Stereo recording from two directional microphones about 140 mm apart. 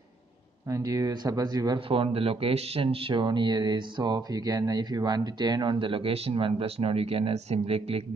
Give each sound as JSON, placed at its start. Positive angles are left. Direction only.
{"t": 0.7, "sound": "speech", "side_deg": -25}
{"t": 1.9, "sound": "speech", "side_deg": -40}